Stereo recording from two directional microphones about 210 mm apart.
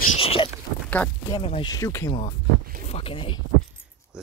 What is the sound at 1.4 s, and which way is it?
Speech, 25° left (ahead or behind).